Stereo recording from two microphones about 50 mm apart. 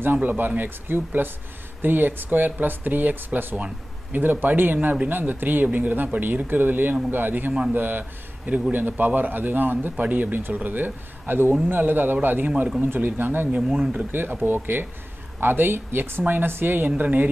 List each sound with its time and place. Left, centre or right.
0.0 s speech: right